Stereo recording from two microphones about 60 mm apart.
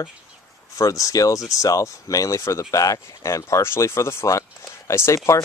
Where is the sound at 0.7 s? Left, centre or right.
Left.